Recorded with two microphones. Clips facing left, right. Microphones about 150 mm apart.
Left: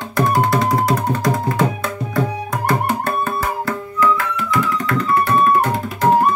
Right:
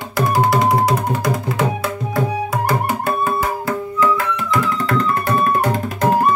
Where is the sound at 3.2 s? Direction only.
15° right (ahead or behind).